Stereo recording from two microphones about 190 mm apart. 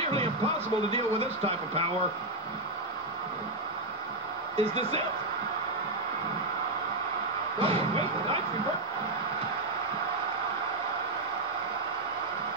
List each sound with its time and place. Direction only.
0.0 s a sound: 30° right (ahead or behind)
0.9 s speech: 30° right (ahead or behind)
4.6 s speech: 30° right (ahead or behind)
7.5 s speech: 30° right (ahead or behind)